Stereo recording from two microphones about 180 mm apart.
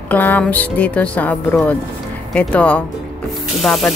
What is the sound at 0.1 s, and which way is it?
Speech, 10° left (ahead or behind).